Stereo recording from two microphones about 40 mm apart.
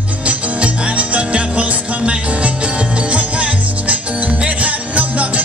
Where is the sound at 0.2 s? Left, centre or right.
Right.